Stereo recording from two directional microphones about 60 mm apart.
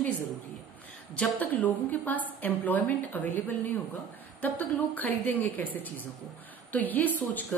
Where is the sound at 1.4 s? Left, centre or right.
Left.